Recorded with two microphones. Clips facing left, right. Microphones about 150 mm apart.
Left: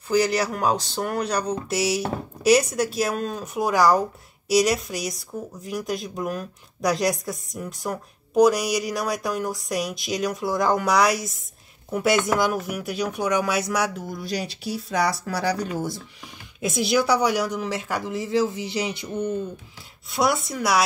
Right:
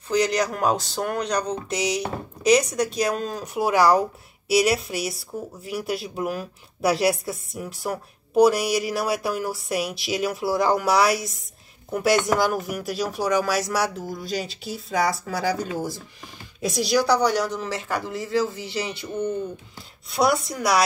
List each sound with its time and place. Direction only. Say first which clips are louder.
0.3 s speech: even; 5° left (ahead or behind)
17.0 s speech: right 2 dB; 10° left (ahead or behind)
20.1 s speech: right 1 dB; centre (ahead or behind)